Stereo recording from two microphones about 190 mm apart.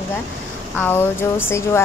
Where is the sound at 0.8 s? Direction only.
10° left (ahead or behind).